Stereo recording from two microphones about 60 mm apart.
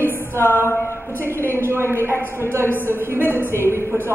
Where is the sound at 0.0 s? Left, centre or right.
Right.